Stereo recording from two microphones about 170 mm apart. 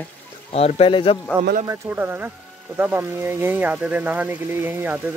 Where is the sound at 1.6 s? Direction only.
15° right (ahead or behind).